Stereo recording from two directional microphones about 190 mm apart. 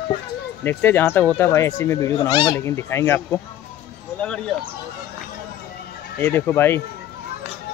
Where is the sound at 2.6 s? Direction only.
15° left (ahead or behind).